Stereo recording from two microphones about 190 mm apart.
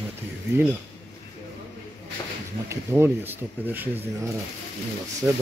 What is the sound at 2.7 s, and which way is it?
Speech, 15° right (ahead or behind).